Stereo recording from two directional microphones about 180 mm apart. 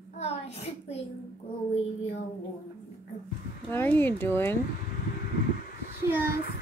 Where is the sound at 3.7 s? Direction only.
10° left (ahead or behind).